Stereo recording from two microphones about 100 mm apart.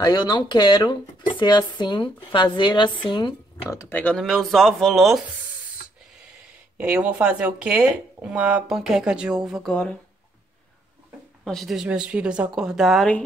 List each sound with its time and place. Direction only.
0.0 s speech: 45° left (ahead or behind)
3.9 s speech: 10° left (ahead or behind)
6.8 s speech: 15° right (ahead or behind)
8.6 s speech: 5° right (ahead or behind)
9.7 s speech: 10° left (ahead or behind)
11.4 s speech: centre (ahead or behind)